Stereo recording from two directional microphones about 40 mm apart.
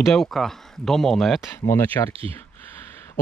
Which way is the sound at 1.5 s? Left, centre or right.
Left.